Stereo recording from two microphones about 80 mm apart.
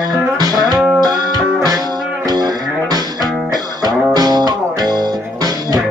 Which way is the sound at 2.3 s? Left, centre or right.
Right.